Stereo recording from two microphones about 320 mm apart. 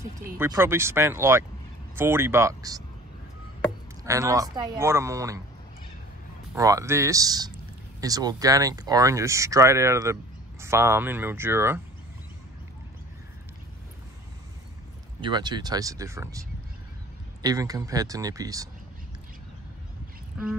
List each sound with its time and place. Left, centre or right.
0.0 s speech: centre
4.0 s speech: centre
6.5 s speech: centre
15.1 s speech: centre
20.4 s a sound: centre